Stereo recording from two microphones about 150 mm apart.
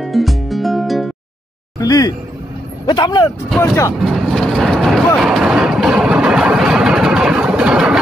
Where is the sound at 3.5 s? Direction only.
20° left (ahead or behind).